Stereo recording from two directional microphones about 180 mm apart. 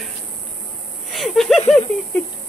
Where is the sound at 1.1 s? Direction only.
Centre (ahead or behind).